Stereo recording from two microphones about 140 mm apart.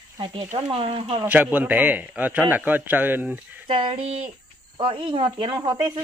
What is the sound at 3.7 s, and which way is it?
Speech, 45° right (ahead or behind).